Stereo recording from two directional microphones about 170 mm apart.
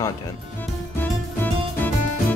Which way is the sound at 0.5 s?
10° left (ahead or behind).